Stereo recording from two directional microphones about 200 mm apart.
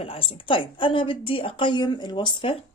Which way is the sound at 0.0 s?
30° left (ahead or behind).